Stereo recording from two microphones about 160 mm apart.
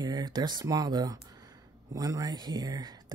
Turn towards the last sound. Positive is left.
turn(degrees=-25)  # may be behind; listen again after turning